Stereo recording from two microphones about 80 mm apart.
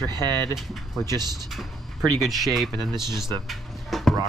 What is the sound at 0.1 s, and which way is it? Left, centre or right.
Speech, right.